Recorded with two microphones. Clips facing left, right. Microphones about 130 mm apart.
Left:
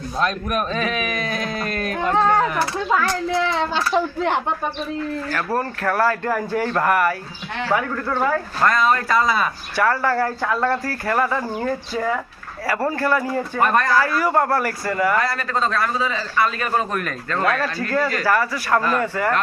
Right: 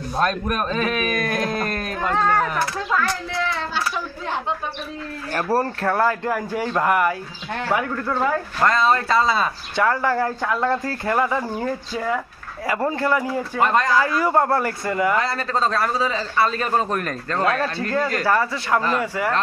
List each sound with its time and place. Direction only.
0.2 s speech: 45° right (ahead or behind)
2.0 s speech: 20° left (ahead or behind)
3.9 s speech: 65° left (ahead or behind)
5.5 s speech: 35° right (ahead or behind)
5.9 s speech: 15° right (ahead or behind)
8.6 s speech: 30° right (ahead or behind); by 19.3 s 10° right (ahead or behind)